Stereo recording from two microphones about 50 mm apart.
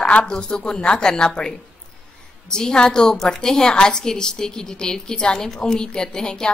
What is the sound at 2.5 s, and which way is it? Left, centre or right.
A woman's voice, centre.